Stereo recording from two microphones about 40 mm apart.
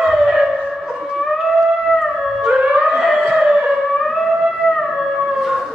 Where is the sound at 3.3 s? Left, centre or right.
Centre.